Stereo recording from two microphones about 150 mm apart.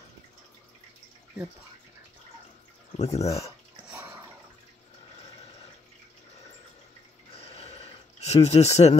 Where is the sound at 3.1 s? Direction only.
45° left (ahead or behind).